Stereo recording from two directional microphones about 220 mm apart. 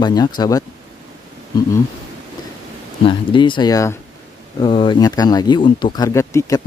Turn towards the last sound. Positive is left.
turn(degrees=15)  # may be behind; listen again after turning